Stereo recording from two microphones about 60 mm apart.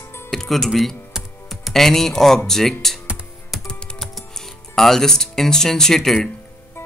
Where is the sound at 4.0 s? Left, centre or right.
Centre.